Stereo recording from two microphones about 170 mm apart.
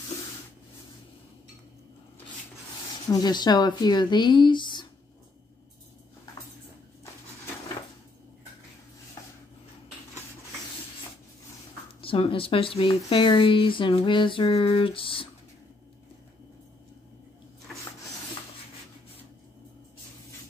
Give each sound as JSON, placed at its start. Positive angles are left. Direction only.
{"t": 3.1, "sound": "speech", "side_deg": 25}
{"t": 12.0, "sound": "speech", "side_deg": 30}